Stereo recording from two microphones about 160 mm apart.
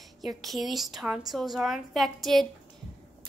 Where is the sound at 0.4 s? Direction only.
Centre (ahead or behind).